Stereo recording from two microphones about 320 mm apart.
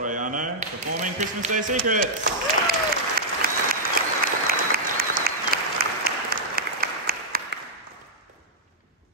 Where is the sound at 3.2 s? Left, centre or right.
Right.